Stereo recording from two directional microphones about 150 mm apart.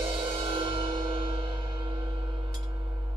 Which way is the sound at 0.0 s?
35° right (ahead or behind).